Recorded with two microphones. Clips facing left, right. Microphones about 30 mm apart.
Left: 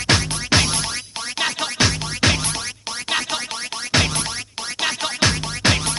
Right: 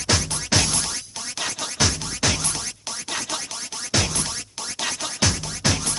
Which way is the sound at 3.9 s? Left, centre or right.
Left.